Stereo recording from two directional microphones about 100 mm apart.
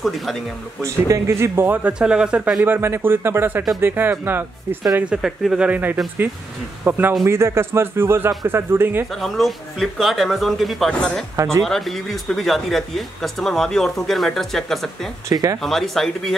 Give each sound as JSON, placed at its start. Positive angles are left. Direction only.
{"t": 0.0, "sound": "speech", "side_deg": 0}
{"t": 0.8, "sound": "speech", "side_deg": -30}
{"t": 2.6, "sound": "speech", "side_deg": -20}
{"t": 5.0, "sound": "speech", "side_deg": -5}
{"t": 5.7, "sound": "speech", "side_deg": -15}
{"t": 9.1, "sound": "speech", "side_deg": 0}
{"t": 15.2, "sound": "speech", "side_deg": -35}
{"t": 15.6, "sound": "speech", "side_deg": 5}